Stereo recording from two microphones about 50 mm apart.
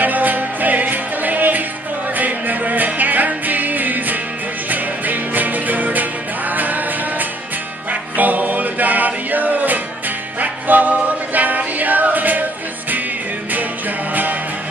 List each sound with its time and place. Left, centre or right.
0.0 s music: right